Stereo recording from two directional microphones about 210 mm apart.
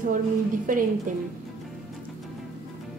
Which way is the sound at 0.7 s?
40° right (ahead or behind).